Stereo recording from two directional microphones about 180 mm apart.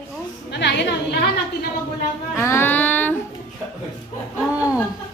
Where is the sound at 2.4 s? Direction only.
10° left (ahead or behind).